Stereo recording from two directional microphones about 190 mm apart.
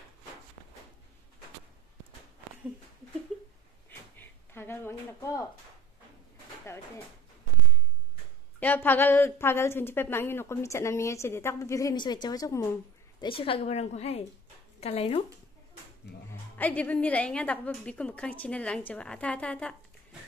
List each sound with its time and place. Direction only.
4.2 s a sound: 10° left (ahead or behind)
8.5 s a woman's voice: 10° left (ahead or behind)
13.2 s a woman's voice: 30° left (ahead or behind)
16.3 s a woman's voice: 10° left (ahead or behind)